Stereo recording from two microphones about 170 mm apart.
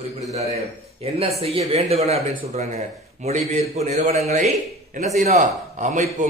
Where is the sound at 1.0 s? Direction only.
35° right (ahead or behind).